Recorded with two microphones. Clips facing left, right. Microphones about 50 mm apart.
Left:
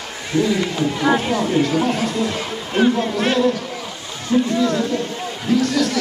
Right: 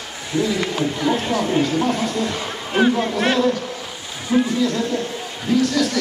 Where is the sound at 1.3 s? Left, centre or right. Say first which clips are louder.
Left 1 dB; centre.